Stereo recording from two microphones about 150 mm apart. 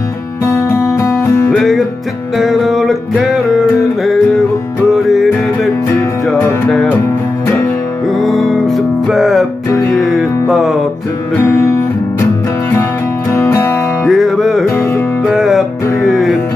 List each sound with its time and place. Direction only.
0.9 s music: 20° left (ahead or behind)
1.6 s music: centre (ahead or behind)
8.2 s music: centre (ahead or behind)
13.3 s music: 20° left (ahead or behind)
14.0 s music: centre (ahead or behind)